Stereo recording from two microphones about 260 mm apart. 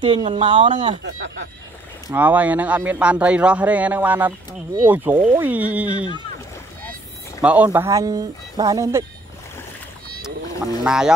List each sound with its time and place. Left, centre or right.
0.0 s speech: centre
1.0 s speech: right
2.0 s speech: centre
7.4 s speech: centre
10.8 s speech: centre